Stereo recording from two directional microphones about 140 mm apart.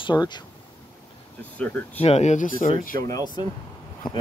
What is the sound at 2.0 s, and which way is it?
Speech, 50° left (ahead or behind).